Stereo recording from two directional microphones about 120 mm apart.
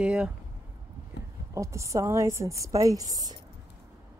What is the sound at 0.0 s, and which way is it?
Speech, 10° right (ahead or behind).